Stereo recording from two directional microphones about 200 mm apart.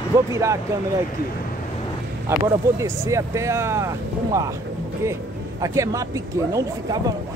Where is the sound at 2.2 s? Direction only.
15° right (ahead or behind).